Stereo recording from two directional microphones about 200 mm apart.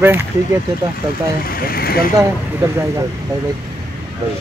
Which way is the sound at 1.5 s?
45° left (ahead or behind).